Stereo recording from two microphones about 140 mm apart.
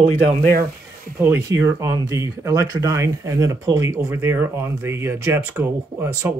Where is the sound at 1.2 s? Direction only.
20° right (ahead or behind).